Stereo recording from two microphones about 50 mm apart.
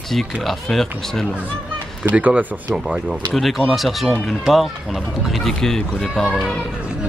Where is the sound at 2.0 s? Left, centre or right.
Right.